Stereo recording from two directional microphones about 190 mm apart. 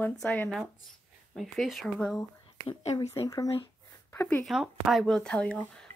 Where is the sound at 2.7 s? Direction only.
25° left (ahead or behind).